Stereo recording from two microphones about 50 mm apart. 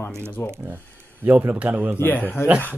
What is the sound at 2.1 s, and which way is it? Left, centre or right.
Speech, left.